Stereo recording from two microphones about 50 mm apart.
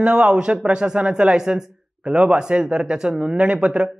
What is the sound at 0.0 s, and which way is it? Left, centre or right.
A man's voice, centre.